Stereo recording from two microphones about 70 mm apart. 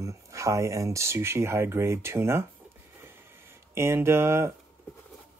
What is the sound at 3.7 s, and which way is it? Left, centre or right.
Speech, right.